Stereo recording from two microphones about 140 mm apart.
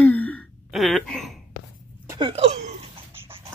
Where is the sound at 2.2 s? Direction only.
45° right (ahead or behind).